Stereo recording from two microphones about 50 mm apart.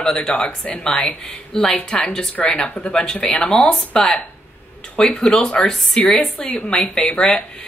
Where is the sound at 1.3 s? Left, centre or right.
Centre.